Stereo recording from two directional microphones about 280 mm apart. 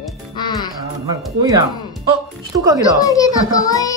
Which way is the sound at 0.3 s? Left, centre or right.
Centre.